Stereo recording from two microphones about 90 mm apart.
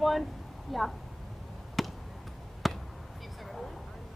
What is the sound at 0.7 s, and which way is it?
Speech, centre (ahead or behind).